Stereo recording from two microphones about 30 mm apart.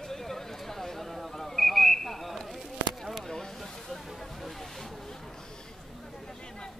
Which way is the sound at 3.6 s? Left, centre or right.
Centre.